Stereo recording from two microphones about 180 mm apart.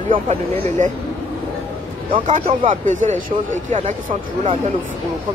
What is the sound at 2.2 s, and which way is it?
Speech, 45° right (ahead or behind).